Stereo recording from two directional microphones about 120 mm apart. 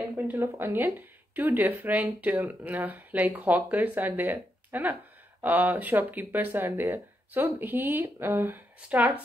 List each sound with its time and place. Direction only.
0.3 s speech: 20° right (ahead or behind)